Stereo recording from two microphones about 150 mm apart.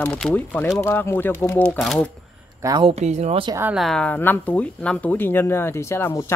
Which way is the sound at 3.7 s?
5° left (ahead or behind).